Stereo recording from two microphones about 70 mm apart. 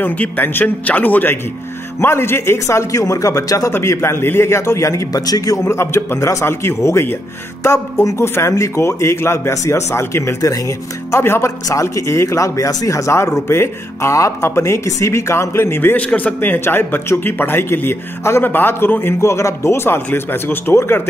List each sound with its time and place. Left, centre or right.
0.0 s speech: left
5.7 s a man's voice: left
16.0 s a man's voice: centre